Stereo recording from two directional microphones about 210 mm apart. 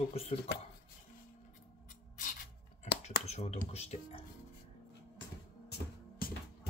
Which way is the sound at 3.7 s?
30° left (ahead or behind).